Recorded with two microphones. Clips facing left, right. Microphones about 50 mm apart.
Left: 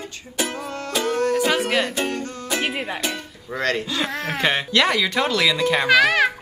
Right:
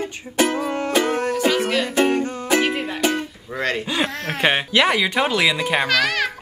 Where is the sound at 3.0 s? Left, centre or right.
Right.